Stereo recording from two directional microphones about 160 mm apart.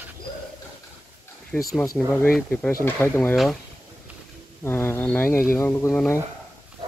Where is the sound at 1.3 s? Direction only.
15° left (ahead or behind).